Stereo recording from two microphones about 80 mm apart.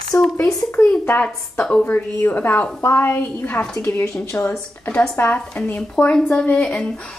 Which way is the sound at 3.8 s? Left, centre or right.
Left.